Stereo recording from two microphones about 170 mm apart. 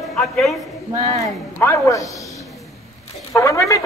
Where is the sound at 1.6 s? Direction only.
15° left (ahead or behind).